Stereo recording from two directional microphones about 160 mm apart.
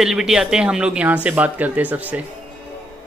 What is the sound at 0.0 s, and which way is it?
Speech, 5° right (ahead or behind).